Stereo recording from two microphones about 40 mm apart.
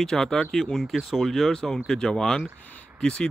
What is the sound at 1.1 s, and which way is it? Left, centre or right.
Speech, centre.